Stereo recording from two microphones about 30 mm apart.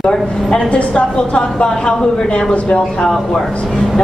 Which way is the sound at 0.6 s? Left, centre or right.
Left.